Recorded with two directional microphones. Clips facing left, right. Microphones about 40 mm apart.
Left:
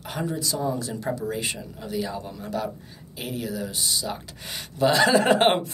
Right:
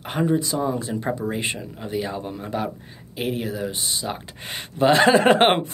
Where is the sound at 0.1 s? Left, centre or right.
Right.